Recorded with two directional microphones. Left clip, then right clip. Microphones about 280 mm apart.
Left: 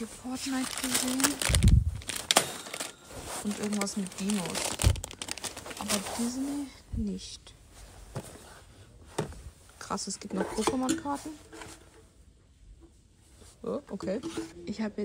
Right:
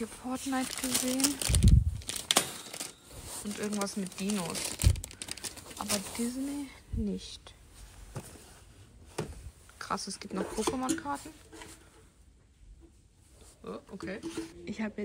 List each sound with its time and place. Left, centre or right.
0.0 s speech: centre
0.5 s a sound: centre
3.5 s speech: centre
4.6 s speech: left
4.9 s a sound: centre
6.4 s speech: centre
8.1 s a sound: centre
9.8 s speech: centre
13.7 s speech: centre
14.2 s speech: centre